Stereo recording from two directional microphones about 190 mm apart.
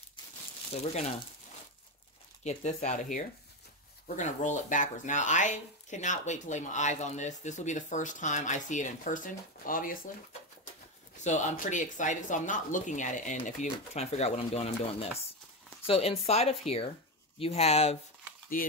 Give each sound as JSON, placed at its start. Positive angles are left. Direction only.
{"t": 0.7, "sound": "speech", "side_deg": 35}
{"t": 2.4, "sound": "speech", "side_deg": 35}
{"t": 11.1, "sound": "speech", "side_deg": 40}
{"t": 18.6, "sound": "a sound", "side_deg": 50}